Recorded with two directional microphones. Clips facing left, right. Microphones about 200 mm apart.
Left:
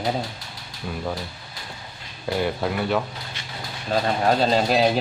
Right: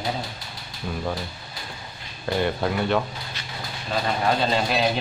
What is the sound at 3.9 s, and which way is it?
Speech, 40° left (ahead or behind).